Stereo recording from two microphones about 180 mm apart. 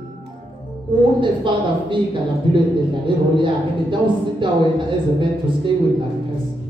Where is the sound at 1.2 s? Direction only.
25° right (ahead or behind).